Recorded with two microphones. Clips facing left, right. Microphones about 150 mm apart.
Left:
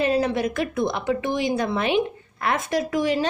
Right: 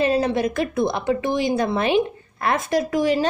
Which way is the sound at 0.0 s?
30° right (ahead or behind).